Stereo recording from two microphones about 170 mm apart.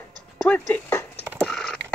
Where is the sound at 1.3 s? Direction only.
5° left (ahead or behind).